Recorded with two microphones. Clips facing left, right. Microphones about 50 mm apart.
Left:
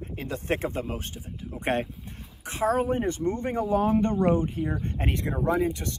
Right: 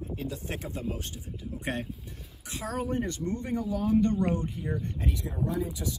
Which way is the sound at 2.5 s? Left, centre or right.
Left.